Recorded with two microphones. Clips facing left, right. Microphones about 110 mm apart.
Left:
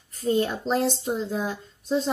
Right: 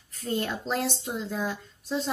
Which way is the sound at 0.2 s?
10° left (ahead or behind).